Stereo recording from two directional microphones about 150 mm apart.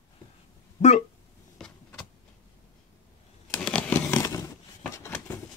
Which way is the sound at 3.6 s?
5° left (ahead or behind).